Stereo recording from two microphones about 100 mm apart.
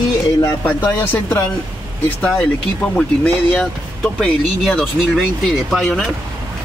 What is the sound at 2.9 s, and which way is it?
Speech, 10° left (ahead or behind).